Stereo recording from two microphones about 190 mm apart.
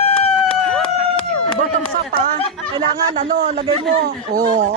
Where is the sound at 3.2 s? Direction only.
45° right (ahead or behind).